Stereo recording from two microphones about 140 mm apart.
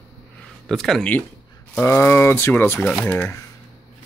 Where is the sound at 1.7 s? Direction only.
15° left (ahead or behind).